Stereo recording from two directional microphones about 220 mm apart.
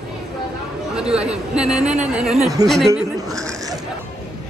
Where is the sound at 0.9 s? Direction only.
5° right (ahead or behind).